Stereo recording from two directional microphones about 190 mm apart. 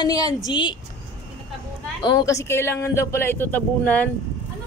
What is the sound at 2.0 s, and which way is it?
Speech, 20° left (ahead or behind).